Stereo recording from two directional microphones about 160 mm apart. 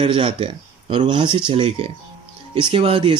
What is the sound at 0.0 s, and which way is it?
Speech, 35° right (ahead or behind).